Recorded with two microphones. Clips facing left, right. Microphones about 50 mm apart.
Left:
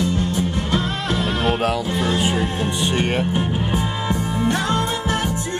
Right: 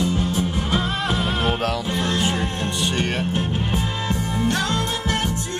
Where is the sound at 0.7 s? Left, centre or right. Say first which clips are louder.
Even; centre.